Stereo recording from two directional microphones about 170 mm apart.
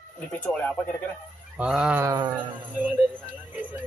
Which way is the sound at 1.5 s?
5° right (ahead or behind).